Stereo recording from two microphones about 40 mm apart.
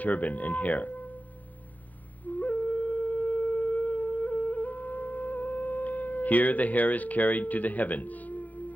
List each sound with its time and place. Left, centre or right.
0.0 s speech: left
2.2 s wind instrument: left